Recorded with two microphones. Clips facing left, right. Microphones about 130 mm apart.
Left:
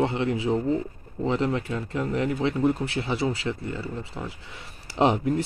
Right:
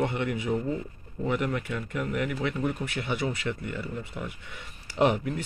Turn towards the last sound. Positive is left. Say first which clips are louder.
# left 3 dB
turn(degrees=35)  # may be behind; listen again after turning